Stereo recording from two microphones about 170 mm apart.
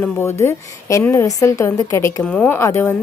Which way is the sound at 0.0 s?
15° left (ahead or behind).